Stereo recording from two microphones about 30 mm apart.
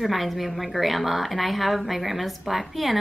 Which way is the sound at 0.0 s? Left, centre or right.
Centre.